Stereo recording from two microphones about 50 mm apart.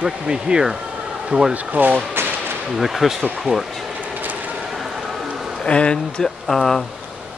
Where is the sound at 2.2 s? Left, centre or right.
Right.